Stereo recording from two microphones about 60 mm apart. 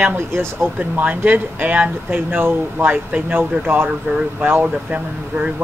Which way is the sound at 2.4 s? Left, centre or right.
Right.